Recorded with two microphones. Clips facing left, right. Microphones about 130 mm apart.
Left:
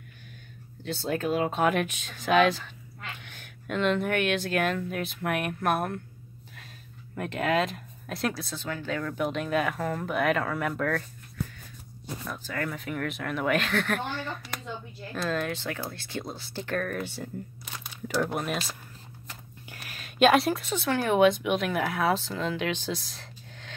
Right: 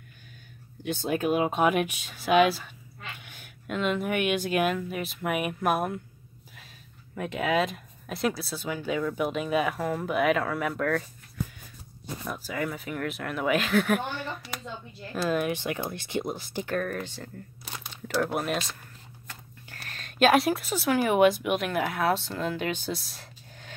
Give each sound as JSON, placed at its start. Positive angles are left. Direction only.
{"t": 0.8, "sound": "speech", "side_deg": -15}
{"t": 7.2, "sound": "speech", "side_deg": 0}
{"t": 12.3, "sound": "speech", "side_deg": -10}
{"t": 16.6, "sound": "speech", "side_deg": 0}
{"t": 19.7, "sound": "speech", "side_deg": 5}